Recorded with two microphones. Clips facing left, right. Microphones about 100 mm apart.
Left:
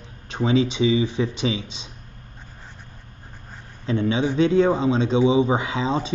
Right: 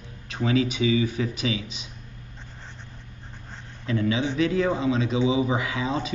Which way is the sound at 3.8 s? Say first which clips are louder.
Left 3 dB; 30° left (ahead or behind).